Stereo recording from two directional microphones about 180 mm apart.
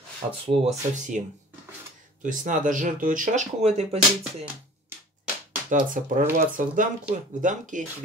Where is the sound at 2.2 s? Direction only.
45° right (ahead or behind).